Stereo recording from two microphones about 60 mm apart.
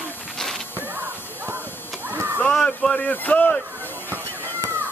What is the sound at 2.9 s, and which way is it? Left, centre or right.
Speech, left.